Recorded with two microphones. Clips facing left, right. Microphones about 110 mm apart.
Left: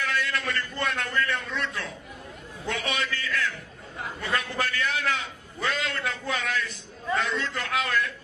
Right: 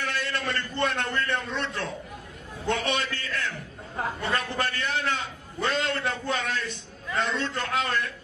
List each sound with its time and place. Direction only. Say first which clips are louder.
0.0 s a man's voice: left 1 dB; 35° right (ahead or behind)